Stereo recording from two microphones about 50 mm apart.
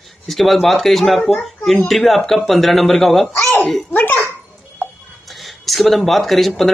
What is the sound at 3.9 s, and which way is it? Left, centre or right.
Speech, left.